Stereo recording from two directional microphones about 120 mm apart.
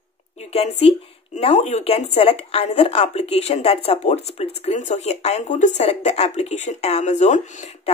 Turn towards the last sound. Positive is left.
turn(degrees=80)